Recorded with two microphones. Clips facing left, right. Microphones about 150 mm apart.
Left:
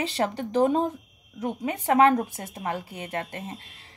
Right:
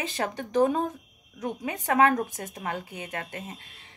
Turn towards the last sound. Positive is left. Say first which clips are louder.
# left 4 dB
turn(degrees=35)  # may be behind; listen again after turning